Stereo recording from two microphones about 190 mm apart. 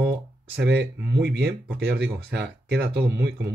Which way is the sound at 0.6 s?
10° right (ahead or behind).